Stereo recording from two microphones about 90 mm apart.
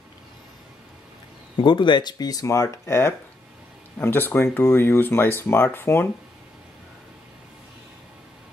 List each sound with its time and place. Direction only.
1.6 s speech: 60° left (ahead or behind); by 6.0 s 25° left (ahead or behind)